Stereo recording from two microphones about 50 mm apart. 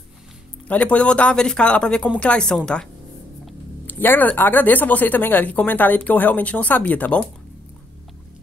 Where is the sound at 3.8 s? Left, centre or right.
Left.